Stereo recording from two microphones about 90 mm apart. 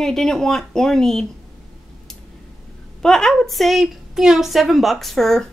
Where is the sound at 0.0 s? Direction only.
5° left (ahead or behind).